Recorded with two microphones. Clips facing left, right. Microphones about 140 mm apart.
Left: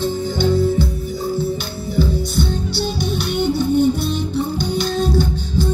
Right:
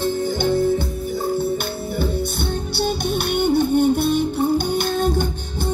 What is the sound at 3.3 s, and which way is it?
Music, 55° right (ahead or behind).